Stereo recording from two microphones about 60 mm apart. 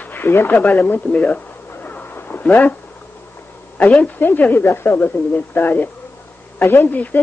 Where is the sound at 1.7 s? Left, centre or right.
Left.